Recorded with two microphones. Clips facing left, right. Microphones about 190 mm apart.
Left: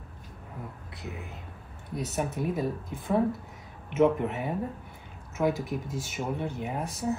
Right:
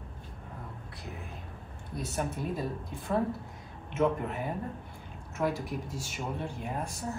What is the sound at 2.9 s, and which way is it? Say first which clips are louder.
Speech: left 4 dB; centre (ahead or behind).